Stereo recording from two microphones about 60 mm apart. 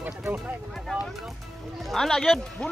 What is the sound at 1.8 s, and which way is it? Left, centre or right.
Speech, centre.